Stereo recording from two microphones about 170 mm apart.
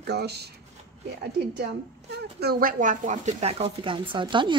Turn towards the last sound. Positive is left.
turn(degrees=-30)  # may be behind; listen again after turning